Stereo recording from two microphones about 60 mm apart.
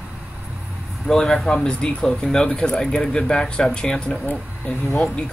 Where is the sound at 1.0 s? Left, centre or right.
Centre.